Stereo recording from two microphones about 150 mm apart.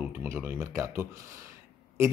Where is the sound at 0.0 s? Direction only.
10° right (ahead or behind).